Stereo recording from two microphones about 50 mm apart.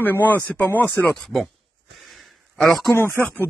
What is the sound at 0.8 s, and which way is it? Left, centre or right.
Speech, left.